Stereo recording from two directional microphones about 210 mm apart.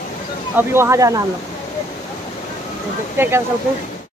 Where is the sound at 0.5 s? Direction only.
10° right (ahead or behind).